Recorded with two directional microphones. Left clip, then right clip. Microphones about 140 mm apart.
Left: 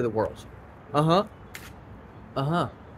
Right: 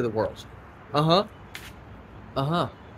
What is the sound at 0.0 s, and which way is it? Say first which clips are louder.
Speech: even; 15° right (ahead or behind).